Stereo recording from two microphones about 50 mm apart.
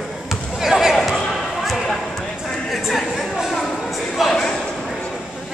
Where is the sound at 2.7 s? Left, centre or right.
Centre.